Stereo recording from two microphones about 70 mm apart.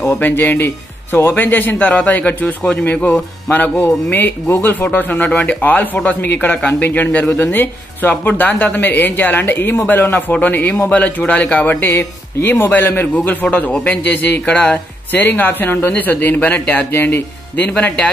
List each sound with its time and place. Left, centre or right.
0.0 s a man's voice: left
13.7 s a man's voice: centre
14.0 s a man's voice: left